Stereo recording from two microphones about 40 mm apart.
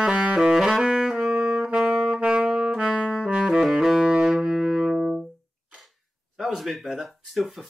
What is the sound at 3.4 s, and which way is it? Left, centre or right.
Music, centre.